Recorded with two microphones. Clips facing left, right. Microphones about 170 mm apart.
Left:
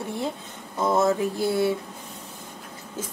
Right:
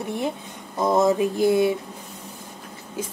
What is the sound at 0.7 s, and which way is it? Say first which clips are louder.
Speech: right 3 dB; 20° right (ahead or behind).